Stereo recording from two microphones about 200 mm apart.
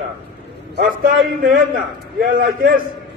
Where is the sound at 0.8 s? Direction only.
50° right (ahead or behind).